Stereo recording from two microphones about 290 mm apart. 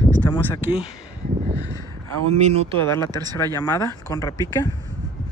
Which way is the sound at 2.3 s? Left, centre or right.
Right.